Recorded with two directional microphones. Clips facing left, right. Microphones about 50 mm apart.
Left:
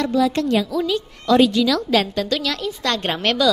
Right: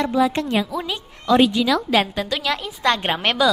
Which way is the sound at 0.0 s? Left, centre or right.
Right.